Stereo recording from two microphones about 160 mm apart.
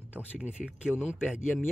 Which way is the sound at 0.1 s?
10° right (ahead or behind).